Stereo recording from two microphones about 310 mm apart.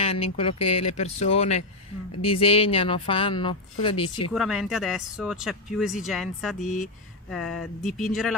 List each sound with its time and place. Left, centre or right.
0.0 s speech: centre
0.6 s speech: left
0.9 s speech: left
4.3 s speech: centre